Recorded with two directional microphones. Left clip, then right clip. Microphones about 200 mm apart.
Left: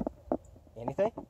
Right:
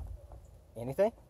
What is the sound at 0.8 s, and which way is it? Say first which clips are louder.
Speech: right 1 dB; 45° right (ahead or behind).